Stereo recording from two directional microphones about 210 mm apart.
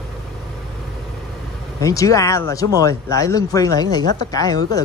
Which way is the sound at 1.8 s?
15° left (ahead or behind).